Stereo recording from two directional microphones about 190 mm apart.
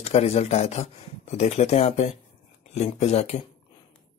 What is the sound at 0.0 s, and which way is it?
Speech, 35° left (ahead or behind).